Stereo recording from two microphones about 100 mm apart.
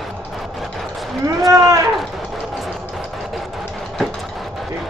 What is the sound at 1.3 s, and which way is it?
Speech, 35° right (ahead or behind).